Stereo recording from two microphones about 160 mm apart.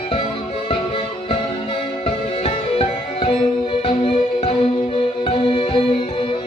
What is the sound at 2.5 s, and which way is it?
Music, 40° left (ahead or behind).